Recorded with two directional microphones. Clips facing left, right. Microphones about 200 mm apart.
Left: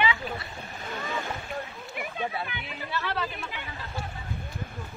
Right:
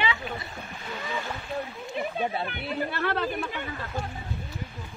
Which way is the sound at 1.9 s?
30° right (ahead or behind).